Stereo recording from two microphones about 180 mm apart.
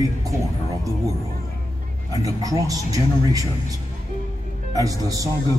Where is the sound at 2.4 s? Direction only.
20° right (ahead or behind).